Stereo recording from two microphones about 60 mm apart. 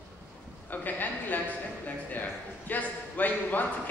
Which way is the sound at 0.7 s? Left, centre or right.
Left.